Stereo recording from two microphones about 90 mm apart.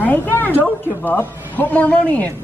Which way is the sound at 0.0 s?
20° left (ahead or behind).